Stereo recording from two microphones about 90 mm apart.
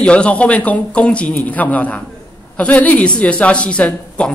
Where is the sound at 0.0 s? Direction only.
10° left (ahead or behind).